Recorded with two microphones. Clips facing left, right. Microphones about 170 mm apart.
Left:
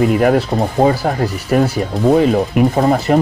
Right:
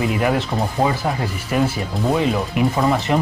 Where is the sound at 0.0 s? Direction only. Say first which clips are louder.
Left 7 dB; 45° left (ahead or behind).